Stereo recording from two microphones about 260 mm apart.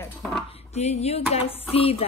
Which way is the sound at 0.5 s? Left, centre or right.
Left.